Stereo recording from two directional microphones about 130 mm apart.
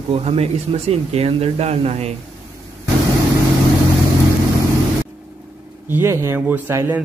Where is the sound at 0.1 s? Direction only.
50° right (ahead or behind).